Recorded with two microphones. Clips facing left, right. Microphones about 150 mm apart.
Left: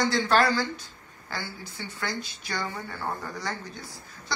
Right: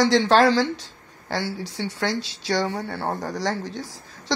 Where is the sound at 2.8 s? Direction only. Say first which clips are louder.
Right 6 dB; 75° right (ahead or behind).